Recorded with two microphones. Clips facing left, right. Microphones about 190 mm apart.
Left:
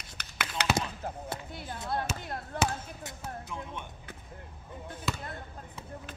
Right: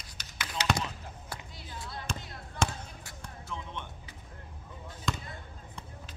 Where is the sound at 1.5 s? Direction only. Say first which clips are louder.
Left 9 dB; 55° left (ahead or behind).